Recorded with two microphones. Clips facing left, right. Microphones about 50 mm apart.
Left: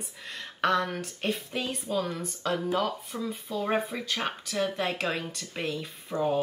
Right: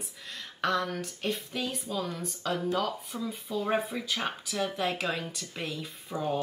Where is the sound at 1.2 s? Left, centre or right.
Centre.